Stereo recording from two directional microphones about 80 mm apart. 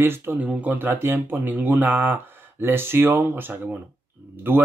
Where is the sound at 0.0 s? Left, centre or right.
Right.